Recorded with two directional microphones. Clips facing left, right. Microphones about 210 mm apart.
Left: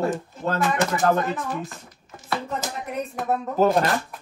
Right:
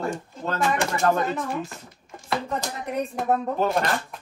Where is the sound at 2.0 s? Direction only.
Centre (ahead or behind).